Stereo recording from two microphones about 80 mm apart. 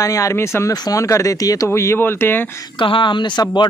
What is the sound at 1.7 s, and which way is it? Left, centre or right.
Speech, left.